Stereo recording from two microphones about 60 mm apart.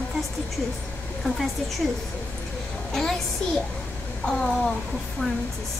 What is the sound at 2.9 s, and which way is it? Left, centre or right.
A child's voice, centre.